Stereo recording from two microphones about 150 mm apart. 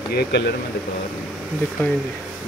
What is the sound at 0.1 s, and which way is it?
Speech, 90° left.